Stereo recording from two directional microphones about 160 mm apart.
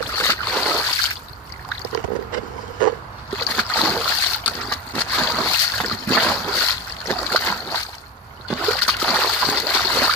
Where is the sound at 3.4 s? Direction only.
10° left (ahead or behind).